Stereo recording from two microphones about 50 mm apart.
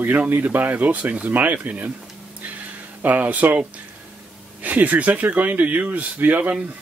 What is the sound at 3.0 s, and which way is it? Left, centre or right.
Speech, right.